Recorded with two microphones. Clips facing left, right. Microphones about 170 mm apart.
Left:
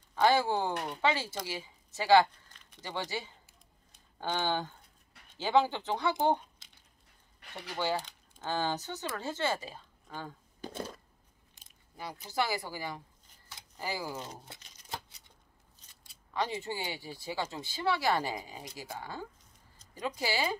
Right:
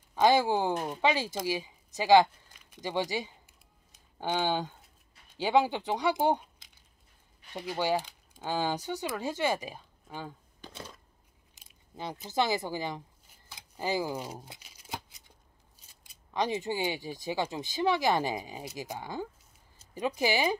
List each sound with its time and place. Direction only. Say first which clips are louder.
0.1 s speech: right 3 dB; 15° right (ahead or behind)
8.0 s speech: right 2 dB; 15° right (ahead or behind)
10.6 s a sound: left 6 dB; 45° left (ahead or behind)
12.0 s speech: right 3 dB; 20° right (ahead or behind)
13.3 s shuffling cards: right 1 dB; 15° right (ahead or behind)
16.1 s speech: right 4 dB; 20° right (ahead or behind)